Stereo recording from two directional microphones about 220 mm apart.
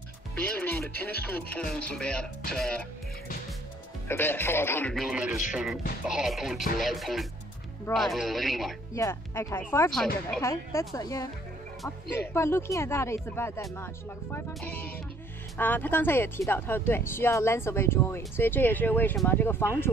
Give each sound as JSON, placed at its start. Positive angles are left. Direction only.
{"t": 0.4, "sound": "speech", "side_deg": 5}
{"t": 4.1, "sound": "speech", "side_deg": 10}
{"t": 8.9, "sound": "speech", "side_deg": 10}